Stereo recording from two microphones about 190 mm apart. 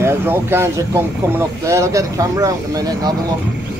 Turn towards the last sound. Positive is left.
turn(degrees=-20)  # may be behind; listen again after turning